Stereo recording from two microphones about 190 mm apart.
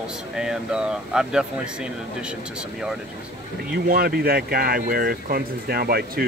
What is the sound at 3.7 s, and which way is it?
Speech, 50° right (ahead or behind).